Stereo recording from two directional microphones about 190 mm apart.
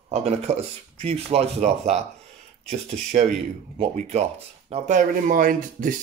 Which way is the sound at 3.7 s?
35° right (ahead or behind).